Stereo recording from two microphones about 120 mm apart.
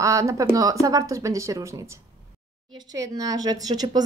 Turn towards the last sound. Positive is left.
turn(degrees=-35)  # may be behind; listen again after turning